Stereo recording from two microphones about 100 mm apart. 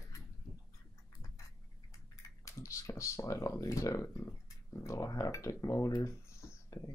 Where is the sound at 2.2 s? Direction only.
30° left (ahead or behind).